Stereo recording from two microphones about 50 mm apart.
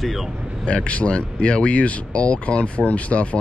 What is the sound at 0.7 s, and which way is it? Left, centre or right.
Speech, left.